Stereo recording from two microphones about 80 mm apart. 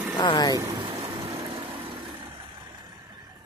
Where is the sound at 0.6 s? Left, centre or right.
Right.